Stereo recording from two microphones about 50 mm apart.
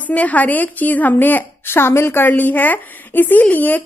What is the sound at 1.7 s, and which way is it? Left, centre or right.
Speech, left.